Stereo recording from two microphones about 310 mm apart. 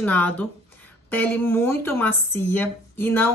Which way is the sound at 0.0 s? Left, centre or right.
Centre.